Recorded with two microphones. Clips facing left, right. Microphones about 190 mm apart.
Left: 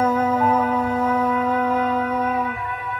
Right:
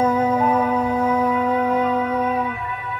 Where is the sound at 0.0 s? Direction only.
15° right (ahead or behind).